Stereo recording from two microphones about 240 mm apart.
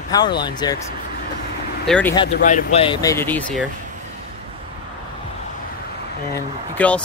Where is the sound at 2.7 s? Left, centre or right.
Left.